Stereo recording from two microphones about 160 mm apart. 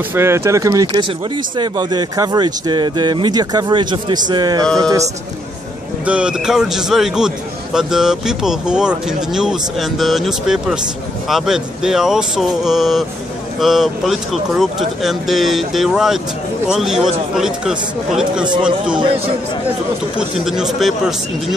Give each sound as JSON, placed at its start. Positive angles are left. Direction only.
{"t": 0.1, "sound": "speech", "side_deg": -15}
{"t": 6.0, "sound": "a man's voice", "side_deg": -5}
{"t": 18.9, "sound": "speech", "side_deg": -35}
{"t": 20.2, "sound": "a man's voice", "side_deg": -5}